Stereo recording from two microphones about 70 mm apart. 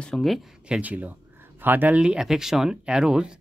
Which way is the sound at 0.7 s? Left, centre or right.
Right.